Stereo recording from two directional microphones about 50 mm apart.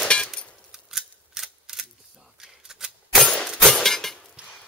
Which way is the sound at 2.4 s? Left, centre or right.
Centre.